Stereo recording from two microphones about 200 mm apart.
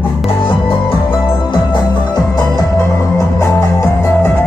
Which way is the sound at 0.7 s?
25° left (ahead or behind).